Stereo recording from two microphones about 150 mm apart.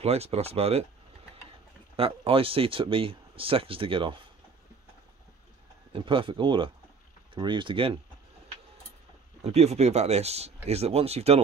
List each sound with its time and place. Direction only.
0.0 s speech: 45° right (ahead or behind)
2.0 s speech: 40° right (ahead or behind)
5.9 s speech: 35° right (ahead or behind)
9.4 s speech: 45° right (ahead or behind)